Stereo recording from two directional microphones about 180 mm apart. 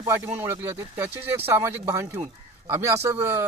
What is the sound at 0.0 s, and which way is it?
A man's voice, 20° right (ahead or behind).